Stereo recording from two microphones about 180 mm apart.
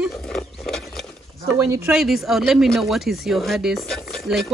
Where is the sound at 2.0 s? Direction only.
Centre (ahead or behind).